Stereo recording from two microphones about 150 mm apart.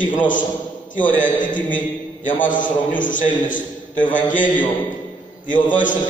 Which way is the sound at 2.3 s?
60° left (ahead or behind).